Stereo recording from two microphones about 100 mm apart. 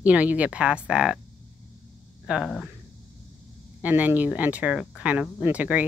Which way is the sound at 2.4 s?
5° left (ahead or behind).